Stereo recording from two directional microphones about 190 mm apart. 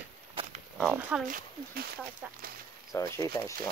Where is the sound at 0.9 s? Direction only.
10° right (ahead or behind).